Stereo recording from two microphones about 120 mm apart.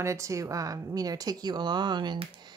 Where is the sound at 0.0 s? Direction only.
25° right (ahead or behind).